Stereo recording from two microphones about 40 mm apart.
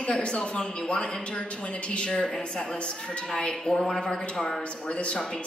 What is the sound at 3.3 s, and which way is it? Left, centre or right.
A woman's voice, left.